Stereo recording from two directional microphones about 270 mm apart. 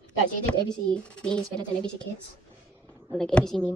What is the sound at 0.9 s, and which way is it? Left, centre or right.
Speech, centre.